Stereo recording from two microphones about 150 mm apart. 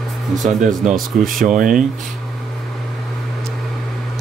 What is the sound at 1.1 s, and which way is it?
Speech, centre (ahead or behind).